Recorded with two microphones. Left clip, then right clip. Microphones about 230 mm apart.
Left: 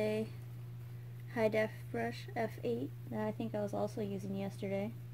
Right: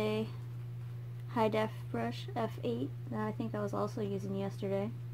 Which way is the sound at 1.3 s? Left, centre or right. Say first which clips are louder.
Right 1 dB; centre.